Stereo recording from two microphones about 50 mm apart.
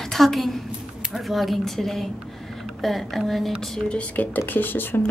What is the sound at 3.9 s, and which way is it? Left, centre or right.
Speech, left.